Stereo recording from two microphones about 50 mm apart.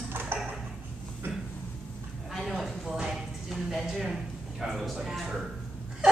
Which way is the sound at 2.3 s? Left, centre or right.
Centre.